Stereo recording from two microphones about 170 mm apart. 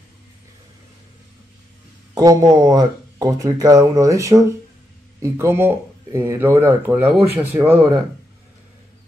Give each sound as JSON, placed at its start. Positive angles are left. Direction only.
{"t": 2.1, "sound": "speech", "side_deg": -20}